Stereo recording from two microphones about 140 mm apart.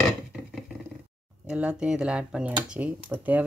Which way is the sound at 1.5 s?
10° right (ahead or behind).